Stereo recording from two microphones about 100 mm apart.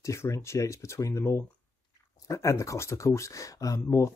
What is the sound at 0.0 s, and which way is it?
Speech, 25° left (ahead or behind).